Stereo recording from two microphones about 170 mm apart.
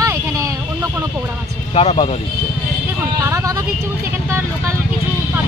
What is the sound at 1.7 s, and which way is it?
Speech, 35° left (ahead or behind).